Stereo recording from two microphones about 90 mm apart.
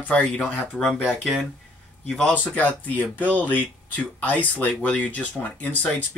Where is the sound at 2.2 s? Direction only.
15° left (ahead or behind).